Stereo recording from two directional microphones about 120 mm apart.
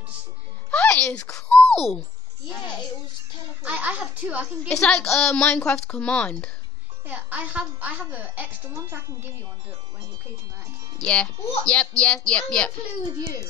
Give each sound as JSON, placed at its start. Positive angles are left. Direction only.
{"t": 0.7, "sound": "a sound", "side_deg": 10}
{"t": 3.6, "sound": "a child's voice", "side_deg": -10}
{"t": 4.6, "sound": "speech", "side_deg": 10}
{"t": 7.1, "sound": "a child's voice", "side_deg": -15}
{"t": 11.0, "sound": "speech", "side_deg": 10}